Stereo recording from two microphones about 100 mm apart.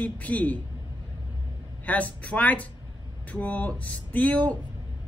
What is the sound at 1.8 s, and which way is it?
A woman's voice, 15° left (ahead or behind).